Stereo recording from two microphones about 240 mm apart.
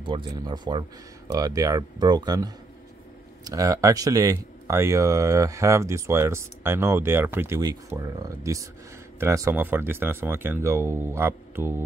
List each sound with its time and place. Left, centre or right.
0.0 s speech: centre